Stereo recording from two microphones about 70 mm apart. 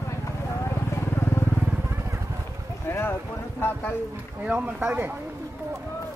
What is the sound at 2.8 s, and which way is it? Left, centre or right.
Boat, left.